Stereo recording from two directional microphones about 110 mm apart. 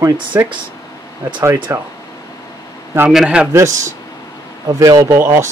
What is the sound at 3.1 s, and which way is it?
Speech, 5° right (ahead or behind).